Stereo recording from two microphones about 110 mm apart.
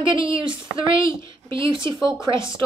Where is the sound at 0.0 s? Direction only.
50° right (ahead or behind).